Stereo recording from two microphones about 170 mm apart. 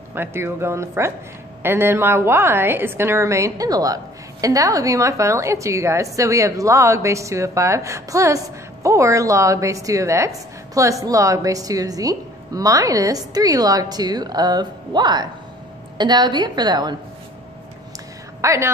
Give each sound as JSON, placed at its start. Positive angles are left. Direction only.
{"t": 0.1, "sound": "a woman's voice", "side_deg": -15}
{"t": 18.4, "sound": "a woman's voice", "side_deg": -15}